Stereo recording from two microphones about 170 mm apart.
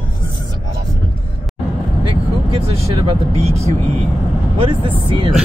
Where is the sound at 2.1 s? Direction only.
35° right (ahead or behind).